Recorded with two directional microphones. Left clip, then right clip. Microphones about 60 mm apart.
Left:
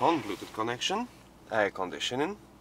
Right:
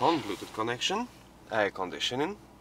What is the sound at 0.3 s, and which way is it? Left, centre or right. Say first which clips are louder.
Speech: even; centre.